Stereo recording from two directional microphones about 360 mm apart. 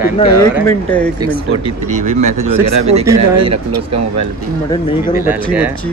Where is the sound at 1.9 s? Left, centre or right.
Right.